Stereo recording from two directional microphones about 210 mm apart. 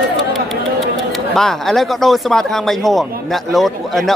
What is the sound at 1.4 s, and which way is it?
Speech, centre (ahead or behind).